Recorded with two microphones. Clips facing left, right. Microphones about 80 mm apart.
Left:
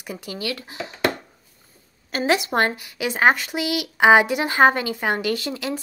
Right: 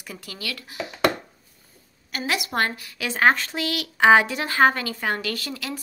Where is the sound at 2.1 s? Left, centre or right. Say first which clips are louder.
Left 6 dB; left.